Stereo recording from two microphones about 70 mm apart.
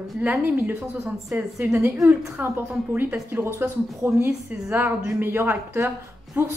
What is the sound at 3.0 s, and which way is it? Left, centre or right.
A woman's voice, right.